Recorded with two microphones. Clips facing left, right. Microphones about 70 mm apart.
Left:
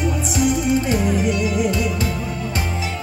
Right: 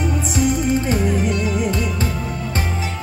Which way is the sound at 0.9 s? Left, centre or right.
Right.